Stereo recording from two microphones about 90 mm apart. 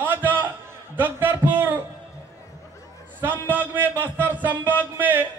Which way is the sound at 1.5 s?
20° right (ahead or behind).